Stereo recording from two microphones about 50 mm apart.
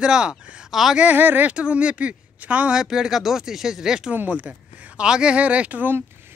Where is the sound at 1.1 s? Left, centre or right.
Right.